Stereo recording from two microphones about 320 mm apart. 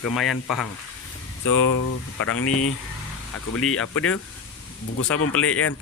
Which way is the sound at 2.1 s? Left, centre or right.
Left.